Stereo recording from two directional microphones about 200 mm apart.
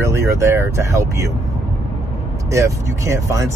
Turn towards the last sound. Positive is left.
turn(degrees=-15)  # may be behind; listen again after turning